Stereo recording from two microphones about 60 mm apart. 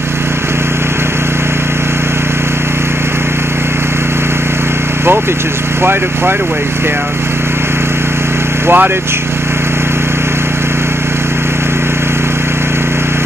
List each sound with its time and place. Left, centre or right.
8.6 s speech: right